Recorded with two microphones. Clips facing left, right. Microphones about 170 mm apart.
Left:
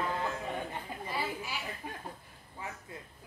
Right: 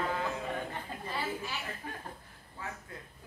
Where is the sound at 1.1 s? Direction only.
10° left (ahead or behind).